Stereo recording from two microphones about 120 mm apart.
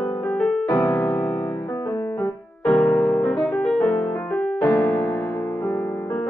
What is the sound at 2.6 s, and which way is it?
Music, 5° left (ahead or behind).